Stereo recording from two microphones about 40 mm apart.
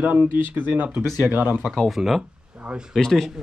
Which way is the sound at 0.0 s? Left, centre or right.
Right.